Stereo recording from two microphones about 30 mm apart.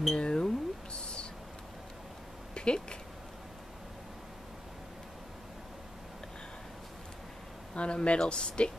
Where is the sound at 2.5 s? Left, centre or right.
Left.